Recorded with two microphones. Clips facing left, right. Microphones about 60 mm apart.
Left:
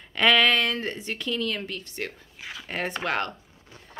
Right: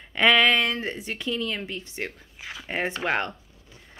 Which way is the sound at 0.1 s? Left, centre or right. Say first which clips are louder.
Right 1 dB; centre.